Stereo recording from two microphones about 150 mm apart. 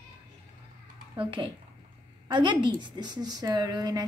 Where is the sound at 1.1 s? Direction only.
35° right (ahead or behind).